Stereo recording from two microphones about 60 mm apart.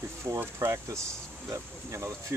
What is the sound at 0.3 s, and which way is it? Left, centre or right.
Speech, right.